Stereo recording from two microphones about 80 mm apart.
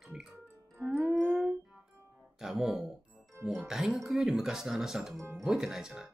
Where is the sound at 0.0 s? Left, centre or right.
Centre.